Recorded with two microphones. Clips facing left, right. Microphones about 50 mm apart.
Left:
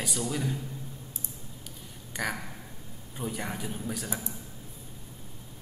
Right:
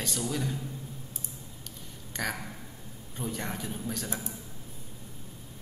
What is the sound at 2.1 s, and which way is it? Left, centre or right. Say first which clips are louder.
Speech: left 1 dB; centre.